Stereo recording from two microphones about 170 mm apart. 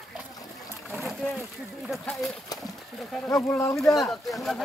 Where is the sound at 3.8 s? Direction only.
Centre (ahead or behind).